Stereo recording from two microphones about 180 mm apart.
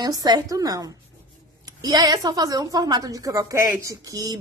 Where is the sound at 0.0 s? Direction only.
20° right (ahead or behind).